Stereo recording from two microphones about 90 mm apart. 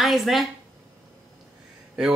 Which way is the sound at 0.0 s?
Centre (ahead or behind).